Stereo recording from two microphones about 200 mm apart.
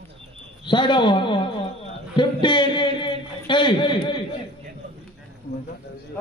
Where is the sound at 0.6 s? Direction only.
25° left (ahead or behind).